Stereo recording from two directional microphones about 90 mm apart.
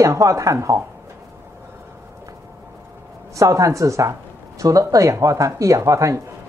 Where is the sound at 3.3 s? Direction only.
35° right (ahead or behind).